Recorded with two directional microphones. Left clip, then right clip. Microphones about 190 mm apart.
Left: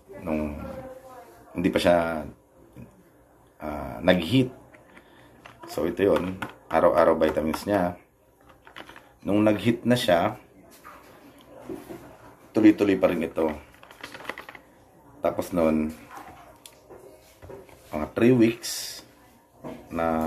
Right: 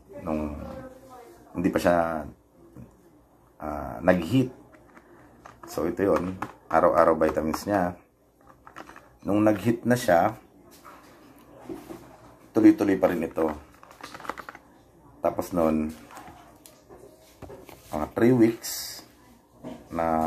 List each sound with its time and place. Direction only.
0.2 s a sound: 15° left (ahead or behind)
1.5 s speech: 15° left (ahead or behind)
3.5 s speech: 10° left (ahead or behind)
8.7 s typing: 10° left (ahead or behind)
9.6 s speech: 5° left (ahead or behind)
12.5 s speech: 5° left (ahead or behind)
15.2 s speech: 15° left (ahead or behind)
17.9 s speech: 10° left (ahead or behind)
19.9 s speech: 15° left (ahead or behind)